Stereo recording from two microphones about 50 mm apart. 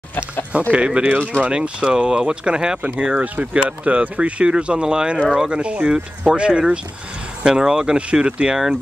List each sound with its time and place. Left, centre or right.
0.5 s speech: right